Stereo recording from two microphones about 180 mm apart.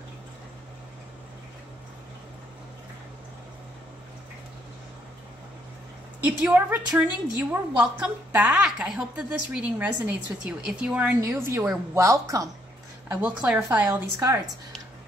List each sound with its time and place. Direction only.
6.2 s a woman's voice: 10° right (ahead or behind)
13.1 s a woman's voice: 5° right (ahead or behind)